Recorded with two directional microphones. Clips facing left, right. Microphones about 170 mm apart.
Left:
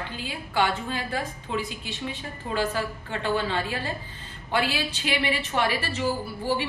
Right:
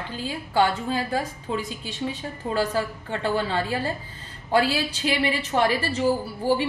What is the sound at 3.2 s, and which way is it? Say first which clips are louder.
A woman's voice: right 2 dB; 40° right (ahead or behind).